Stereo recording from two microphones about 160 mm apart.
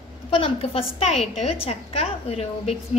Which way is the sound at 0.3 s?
35° left (ahead or behind).